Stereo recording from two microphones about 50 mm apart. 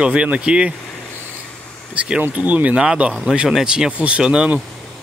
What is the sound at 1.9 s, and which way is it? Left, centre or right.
Speech, right.